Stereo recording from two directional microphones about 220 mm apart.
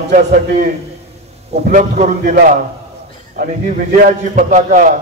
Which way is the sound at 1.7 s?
35° right (ahead or behind).